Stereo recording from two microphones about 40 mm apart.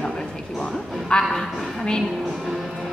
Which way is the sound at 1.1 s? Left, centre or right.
Left.